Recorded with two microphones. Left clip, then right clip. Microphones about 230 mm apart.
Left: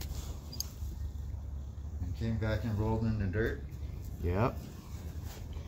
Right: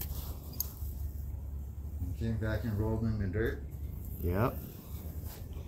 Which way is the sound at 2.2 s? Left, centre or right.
Left.